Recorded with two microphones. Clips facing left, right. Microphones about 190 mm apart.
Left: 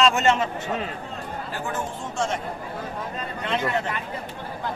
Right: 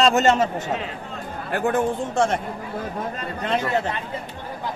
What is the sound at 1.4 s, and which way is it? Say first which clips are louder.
Speech: right 11 dB; 60° right (ahead or behind).